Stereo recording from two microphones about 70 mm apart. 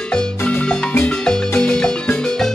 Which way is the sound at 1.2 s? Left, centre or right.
Centre.